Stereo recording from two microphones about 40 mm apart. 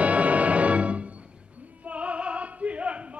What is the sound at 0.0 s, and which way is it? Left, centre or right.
Music, right.